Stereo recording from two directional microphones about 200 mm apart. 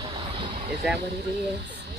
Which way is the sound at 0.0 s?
25° right (ahead or behind).